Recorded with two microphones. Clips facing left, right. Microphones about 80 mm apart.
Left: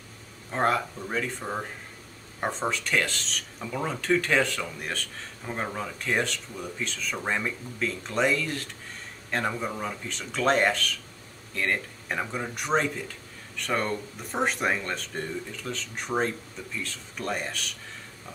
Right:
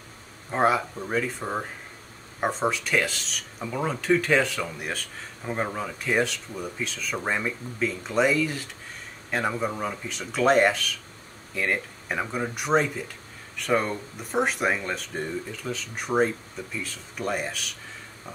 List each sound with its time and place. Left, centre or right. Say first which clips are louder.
0.5 s speech: right 3 dB; centre